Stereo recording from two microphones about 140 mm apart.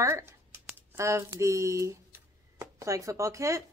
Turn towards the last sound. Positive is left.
turn(degrees=-20)  # may be behind; listen again after turning